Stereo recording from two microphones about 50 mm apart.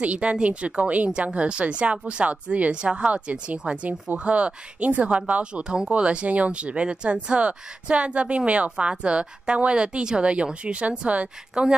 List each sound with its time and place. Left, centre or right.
0.0 s speech: right